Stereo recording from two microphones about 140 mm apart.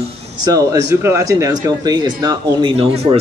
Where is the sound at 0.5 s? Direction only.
25° right (ahead or behind).